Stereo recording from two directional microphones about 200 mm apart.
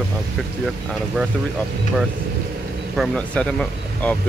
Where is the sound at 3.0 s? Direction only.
5° left (ahead or behind).